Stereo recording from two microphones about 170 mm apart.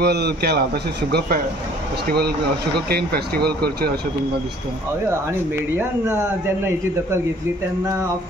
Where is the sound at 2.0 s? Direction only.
70° right (ahead or behind).